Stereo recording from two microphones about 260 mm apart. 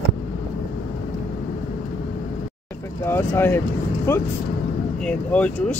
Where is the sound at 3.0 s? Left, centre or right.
Centre.